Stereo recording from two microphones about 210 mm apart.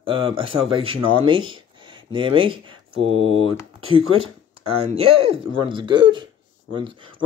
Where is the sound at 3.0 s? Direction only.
80° right.